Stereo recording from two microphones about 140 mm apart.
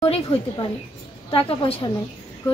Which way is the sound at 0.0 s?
40° left (ahead or behind).